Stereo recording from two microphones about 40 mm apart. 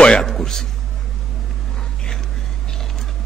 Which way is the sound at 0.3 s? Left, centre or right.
Centre.